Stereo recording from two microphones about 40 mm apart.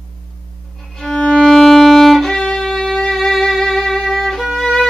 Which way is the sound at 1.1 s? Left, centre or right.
Left.